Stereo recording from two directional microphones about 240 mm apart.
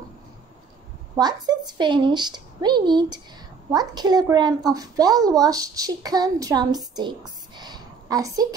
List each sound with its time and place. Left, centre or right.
1.1 s a woman's voice: centre